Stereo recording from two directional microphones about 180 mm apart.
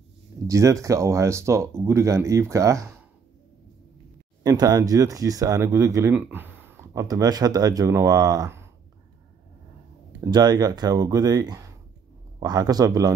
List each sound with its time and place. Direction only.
0.5 s speech: 15° right (ahead or behind)
4.4 s speech: 20° right (ahead or behind)
10.3 s speech: 20° right (ahead or behind)